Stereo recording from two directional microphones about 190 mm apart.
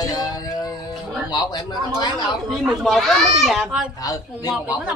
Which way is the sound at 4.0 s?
20° left (ahead or behind).